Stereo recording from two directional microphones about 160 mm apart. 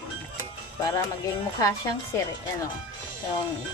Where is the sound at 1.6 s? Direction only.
20° left (ahead or behind).